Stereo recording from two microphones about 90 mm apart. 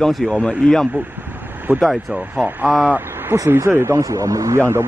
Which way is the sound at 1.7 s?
20° right (ahead or behind).